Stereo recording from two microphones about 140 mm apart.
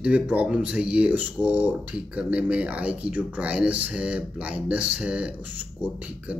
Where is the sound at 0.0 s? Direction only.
10° right (ahead or behind).